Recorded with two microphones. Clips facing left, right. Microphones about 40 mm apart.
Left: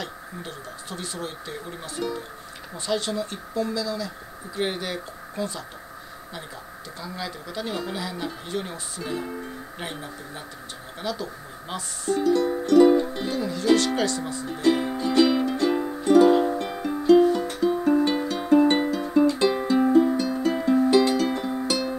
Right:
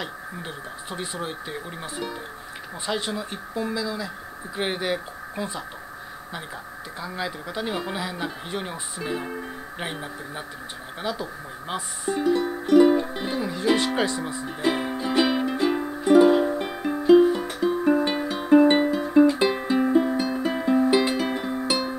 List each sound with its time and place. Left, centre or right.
0.0 s speech: right
7.0 s speech: right
11.7 s music: centre